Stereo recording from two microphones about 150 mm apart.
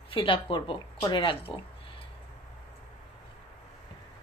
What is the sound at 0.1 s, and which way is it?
Speech, 35° left (ahead or behind).